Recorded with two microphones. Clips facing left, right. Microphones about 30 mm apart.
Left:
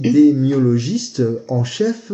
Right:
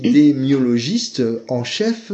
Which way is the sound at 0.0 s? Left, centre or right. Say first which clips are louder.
Left 1 dB; right.